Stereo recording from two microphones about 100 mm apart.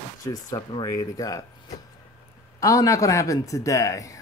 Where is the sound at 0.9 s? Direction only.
35° left (ahead or behind).